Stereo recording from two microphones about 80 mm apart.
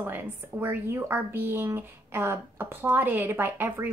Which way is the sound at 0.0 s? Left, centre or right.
Right.